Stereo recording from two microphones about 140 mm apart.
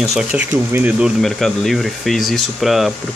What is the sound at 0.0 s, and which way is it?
Speech, 5° right (ahead or behind).